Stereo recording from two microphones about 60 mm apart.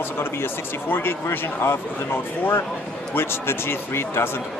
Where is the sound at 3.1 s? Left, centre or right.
Left.